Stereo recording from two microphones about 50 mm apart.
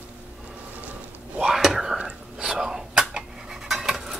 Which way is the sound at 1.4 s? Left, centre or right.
Centre.